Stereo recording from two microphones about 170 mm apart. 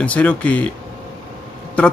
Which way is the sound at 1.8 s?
10° left (ahead or behind).